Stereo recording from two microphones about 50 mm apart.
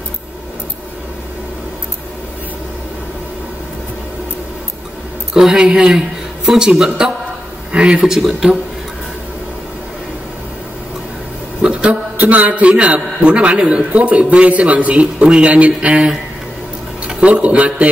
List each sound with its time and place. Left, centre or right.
5.3 s a man's voice: centre
11.6 s a man's voice: right
17.2 s a man's voice: right